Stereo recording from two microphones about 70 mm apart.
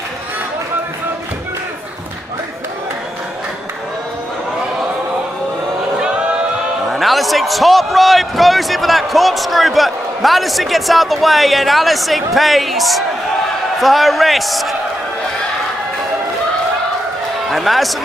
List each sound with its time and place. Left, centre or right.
6.9 s a man's voice: centre
17.5 s a man's voice: centre